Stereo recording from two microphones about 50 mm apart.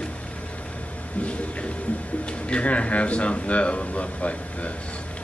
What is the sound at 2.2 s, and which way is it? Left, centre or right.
A man's voice, left.